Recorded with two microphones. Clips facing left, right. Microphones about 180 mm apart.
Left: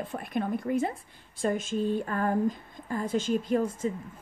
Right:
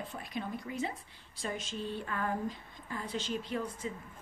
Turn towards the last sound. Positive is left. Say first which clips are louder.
# left 10 dB
turn(degrees=45)  # may be behind; listen again after turning